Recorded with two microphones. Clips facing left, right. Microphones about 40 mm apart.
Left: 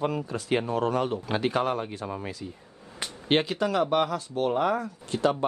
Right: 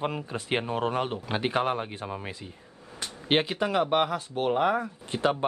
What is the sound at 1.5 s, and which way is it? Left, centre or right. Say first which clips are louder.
Speech: even; right.